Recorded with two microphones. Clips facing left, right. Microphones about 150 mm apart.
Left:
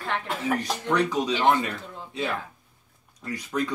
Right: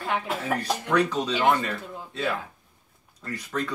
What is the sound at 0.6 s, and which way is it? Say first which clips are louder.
Speech: right 1 dB; 15° left (ahead or behind).